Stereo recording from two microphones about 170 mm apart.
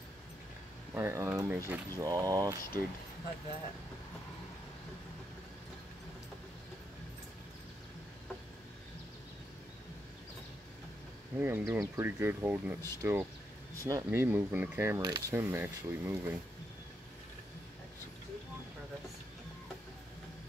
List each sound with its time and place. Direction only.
0.9 s speech: 15° right (ahead or behind)
11.3 s speech: 10° right (ahead or behind)
15.0 s speech: 25° right (ahead or behind)